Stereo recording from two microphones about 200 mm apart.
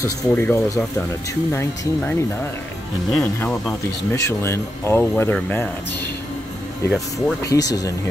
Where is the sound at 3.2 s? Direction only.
10° left (ahead or behind).